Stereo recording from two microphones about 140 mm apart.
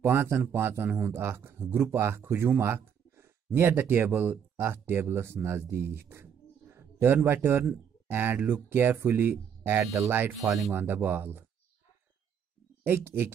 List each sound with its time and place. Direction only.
0.0 s a man's voice: 15° right (ahead or behind)
12.8 s a man's voice: 15° right (ahead or behind)